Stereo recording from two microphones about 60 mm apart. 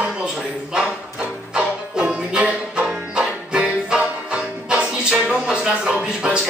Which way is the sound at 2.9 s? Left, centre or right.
Centre.